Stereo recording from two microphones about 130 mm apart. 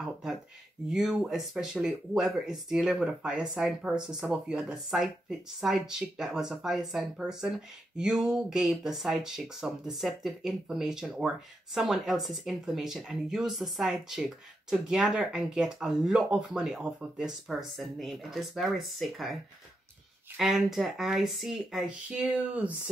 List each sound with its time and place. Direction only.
0.0 s a sound: 5° right (ahead or behind)
0.8 s speech: centre (ahead or behind)
20.3 s speech: 5° right (ahead or behind)